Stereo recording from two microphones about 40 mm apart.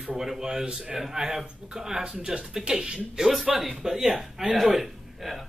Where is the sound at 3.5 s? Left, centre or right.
Centre.